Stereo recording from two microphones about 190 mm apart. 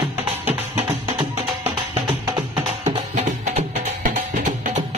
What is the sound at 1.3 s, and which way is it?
Music, 35° right (ahead or behind).